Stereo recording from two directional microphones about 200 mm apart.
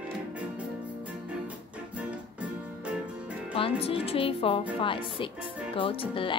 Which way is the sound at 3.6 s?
30° left (ahead or behind).